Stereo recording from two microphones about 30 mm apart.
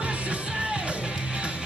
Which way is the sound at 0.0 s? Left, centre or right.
Right.